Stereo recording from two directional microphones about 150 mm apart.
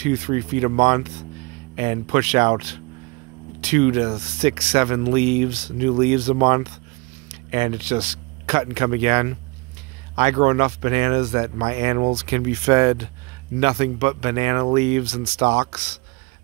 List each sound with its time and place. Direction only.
0.0 s speech: 45° right (ahead or behind)